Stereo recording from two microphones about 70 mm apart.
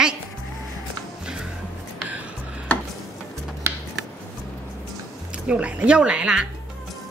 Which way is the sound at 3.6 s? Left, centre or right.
Right.